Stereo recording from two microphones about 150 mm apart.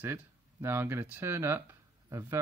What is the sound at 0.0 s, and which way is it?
Speech, 15° right (ahead or behind).